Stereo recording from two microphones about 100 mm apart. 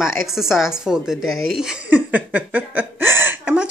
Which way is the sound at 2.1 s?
15° right (ahead or behind).